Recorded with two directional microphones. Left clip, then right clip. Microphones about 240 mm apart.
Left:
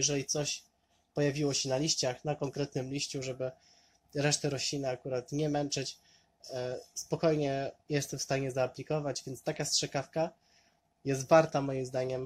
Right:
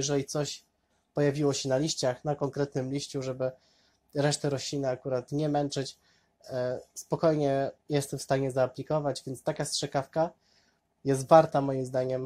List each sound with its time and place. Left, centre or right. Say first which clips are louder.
0.0 s speech: right 2 dB; centre